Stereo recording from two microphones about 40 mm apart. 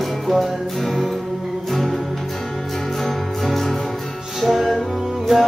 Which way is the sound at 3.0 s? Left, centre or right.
Centre.